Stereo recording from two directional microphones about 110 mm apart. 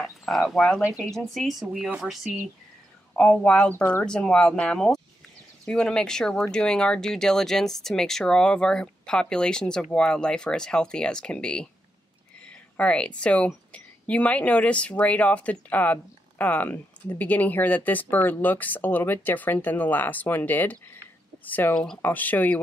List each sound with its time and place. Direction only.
0.0 s speech: centre (ahead or behind)
0.8 s speech: 15° right (ahead or behind)
1.1 s speech: 5° left (ahead or behind)
3.2 s a woman's voice: 10° left (ahead or behind)
12.7 s a woman's voice: 10° left (ahead or behind)